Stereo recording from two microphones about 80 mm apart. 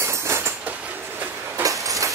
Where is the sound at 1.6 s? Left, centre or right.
Right.